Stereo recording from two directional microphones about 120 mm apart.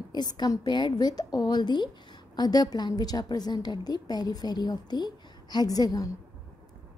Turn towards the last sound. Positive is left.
turn(degrees=30)  # may be behind; listen again after turning